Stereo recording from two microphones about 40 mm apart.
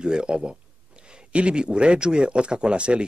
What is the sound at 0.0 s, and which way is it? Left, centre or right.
Speech, right.